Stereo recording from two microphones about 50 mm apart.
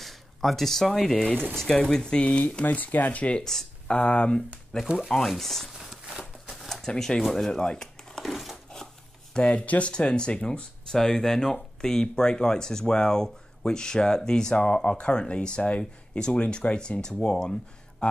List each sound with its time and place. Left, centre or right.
0.0 s speech: centre; by 2.6 s left
2.6 s speech: left
3.4 s a sound: centre
3.9 s speech: left
4.9 s speech: centre
5.7 s a sound: centre
6.5 s shuffling cards: centre
6.9 s speech: centre
7.3 s a sound: centre
8.3 s crumpling: centre
9.3 s speech: left